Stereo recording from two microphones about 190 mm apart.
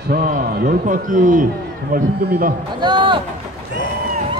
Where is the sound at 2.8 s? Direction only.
25° right (ahead or behind).